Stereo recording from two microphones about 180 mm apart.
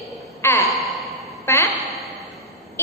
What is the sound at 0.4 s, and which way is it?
Gasp, 15° left (ahead or behind).